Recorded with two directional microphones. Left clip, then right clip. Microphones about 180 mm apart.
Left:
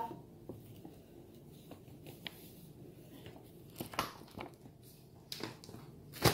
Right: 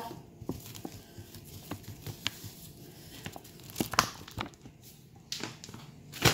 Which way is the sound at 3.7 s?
50° right (ahead or behind).